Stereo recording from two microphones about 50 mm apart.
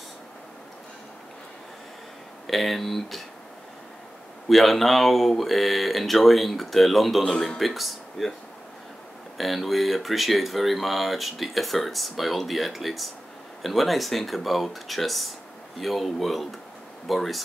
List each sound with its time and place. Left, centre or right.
2.4 s speech: centre
4.5 s speech: centre
9.4 s speech: centre